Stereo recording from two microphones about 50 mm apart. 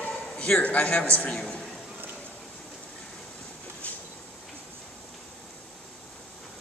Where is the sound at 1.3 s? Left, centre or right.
Centre.